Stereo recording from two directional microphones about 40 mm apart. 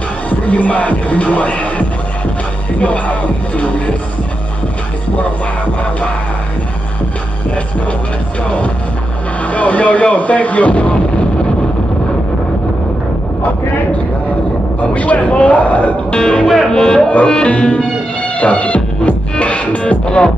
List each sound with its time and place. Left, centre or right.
0.3 s music: left
8.5 s music: left
14.8 s music: left
16.1 s speech: left
16.7 s music: centre
17.1 s music: left